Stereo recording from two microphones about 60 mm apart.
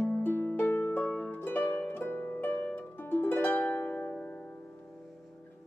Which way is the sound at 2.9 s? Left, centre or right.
Left.